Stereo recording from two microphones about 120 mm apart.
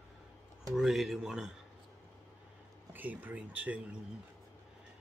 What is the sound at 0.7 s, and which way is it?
Speech, centre (ahead or behind).